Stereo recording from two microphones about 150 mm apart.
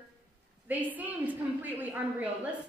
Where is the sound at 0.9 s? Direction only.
10° right (ahead or behind).